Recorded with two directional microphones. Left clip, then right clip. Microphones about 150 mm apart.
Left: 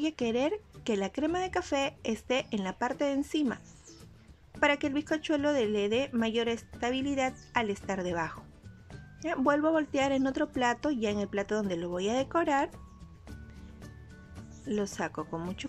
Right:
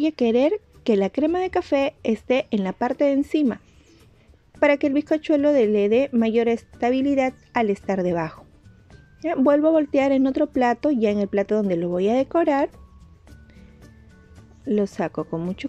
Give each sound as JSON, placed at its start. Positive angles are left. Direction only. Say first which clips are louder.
{"t": 0.0, "sound": "a woman's voice", "louder": "right 11 dB", "side_deg": -30}
{"t": 14.7, "sound": "a woman's voice", "louder": "right 10 dB", "side_deg": -30}